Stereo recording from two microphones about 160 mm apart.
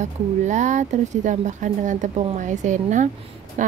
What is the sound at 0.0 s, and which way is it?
Speech, 50° right (ahead or behind).